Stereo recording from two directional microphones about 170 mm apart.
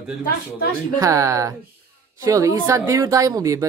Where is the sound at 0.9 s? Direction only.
20° right (ahead or behind).